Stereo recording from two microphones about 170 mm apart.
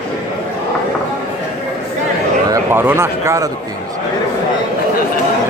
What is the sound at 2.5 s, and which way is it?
Speech, 15° right (ahead or behind).